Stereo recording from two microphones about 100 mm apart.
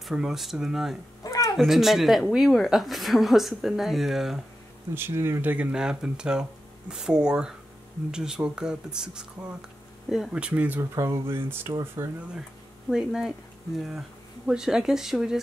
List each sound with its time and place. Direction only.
0.0 s speech: 5° right (ahead or behind)
1.2 s cat: 35° left (ahead or behind)
1.6 s speech: centre (ahead or behind)
4.9 s speech: 25° right (ahead or behind)
11.0 s speech: 25° right (ahead or behind)
12.9 s speech: 5° right (ahead or behind)